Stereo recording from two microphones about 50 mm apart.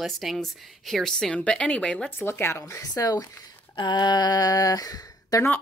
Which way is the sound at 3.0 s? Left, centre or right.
Left.